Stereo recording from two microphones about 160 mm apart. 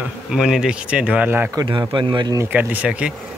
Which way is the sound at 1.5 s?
25° right (ahead or behind).